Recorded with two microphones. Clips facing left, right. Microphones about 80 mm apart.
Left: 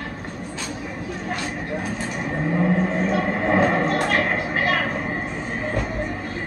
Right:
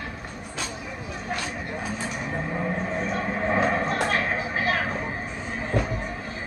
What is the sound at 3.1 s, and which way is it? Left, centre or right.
Vehicle, left.